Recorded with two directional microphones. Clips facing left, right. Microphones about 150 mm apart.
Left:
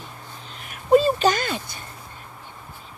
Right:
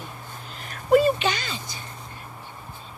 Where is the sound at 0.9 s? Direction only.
35° left (ahead or behind); by 1.8 s 55° left (ahead or behind).